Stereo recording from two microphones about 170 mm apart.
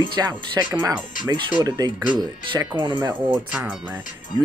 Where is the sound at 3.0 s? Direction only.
10° right (ahead or behind).